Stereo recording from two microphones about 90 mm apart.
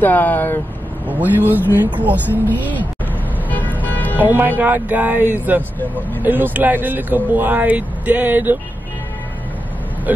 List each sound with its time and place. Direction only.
0.0 s speech: 20° left (ahead or behind)
1.0 s speech: 20° right (ahead or behind)
3.4 s vehicle: 20° left (ahead or behind)
3.8 s music: 20° left (ahead or behind)
4.2 s speech: 20° right (ahead or behind)
10.1 s speech: 20° right (ahead or behind)